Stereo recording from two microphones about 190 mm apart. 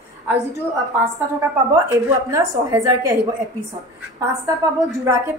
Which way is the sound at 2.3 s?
15° right (ahead or behind).